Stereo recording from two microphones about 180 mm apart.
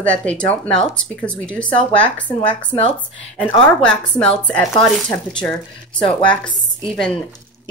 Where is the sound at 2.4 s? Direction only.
35° left (ahead or behind).